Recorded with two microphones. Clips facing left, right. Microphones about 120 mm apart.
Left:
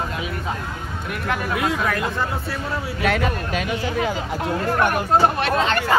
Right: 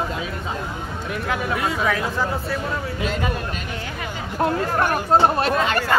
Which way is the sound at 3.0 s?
80° left.